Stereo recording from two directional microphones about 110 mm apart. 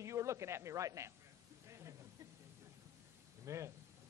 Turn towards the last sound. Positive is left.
turn(degrees=-25)  # may be behind; listen again after turning